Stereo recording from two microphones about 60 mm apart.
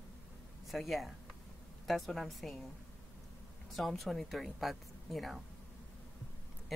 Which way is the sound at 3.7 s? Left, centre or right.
Centre.